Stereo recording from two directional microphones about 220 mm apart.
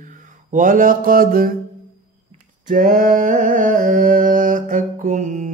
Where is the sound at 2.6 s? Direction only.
40° right (ahead or behind).